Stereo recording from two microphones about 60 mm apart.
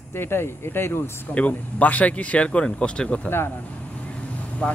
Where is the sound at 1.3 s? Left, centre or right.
Left.